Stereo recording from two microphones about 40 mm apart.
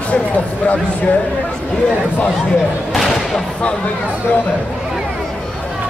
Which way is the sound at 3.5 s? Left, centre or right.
Left.